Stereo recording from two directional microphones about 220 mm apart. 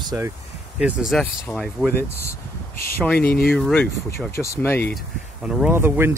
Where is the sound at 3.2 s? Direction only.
45° left (ahead or behind).